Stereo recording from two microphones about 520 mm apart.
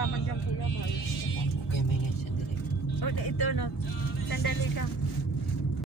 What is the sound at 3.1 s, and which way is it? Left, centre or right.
A man's voice, left.